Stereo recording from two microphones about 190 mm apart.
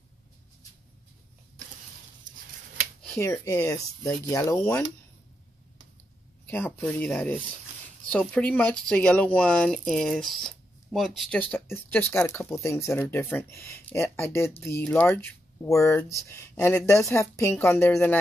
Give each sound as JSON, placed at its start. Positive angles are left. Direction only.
{"t": 3.2, "sound": "speech", "side_deg": 15}
{"t": 6.4, "sound": "speech", "side_deg": 10}